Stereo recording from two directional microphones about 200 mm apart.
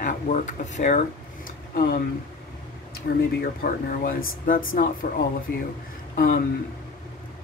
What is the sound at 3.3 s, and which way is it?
Speech, 45° left (ahead or behind).